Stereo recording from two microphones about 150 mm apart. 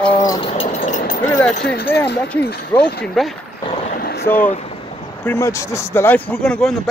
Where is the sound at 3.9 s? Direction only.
85° left.